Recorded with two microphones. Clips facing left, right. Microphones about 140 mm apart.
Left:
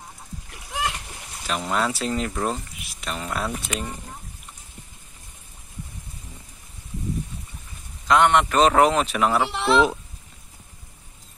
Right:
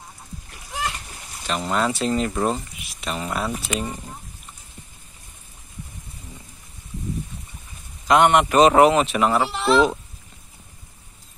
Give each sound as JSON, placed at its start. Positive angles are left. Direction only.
{"t": 0.7, "sound": "splash", "side_deg": 10}
{"t": 1.5, "sound": "speech", "side_deg": 0}
{"t": 8.1, "sound": "a man's voice", "side_deg": -15}
{"t": 9.5, "sound": "speech", "side_deg": 15}